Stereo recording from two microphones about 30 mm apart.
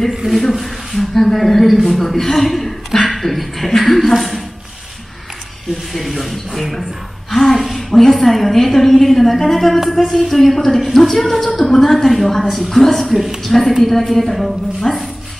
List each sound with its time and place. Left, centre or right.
0.3 s a woman's voice: centre
5.9 s a woman's voice: centre
11.6 s a woman's voice: centre
12.0 s a woman's voice: centre
14.8 s a woman's voice: centre